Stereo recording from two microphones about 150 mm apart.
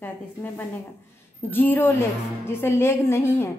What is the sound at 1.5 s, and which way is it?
A woman's voice, 15° left (ahead or behind).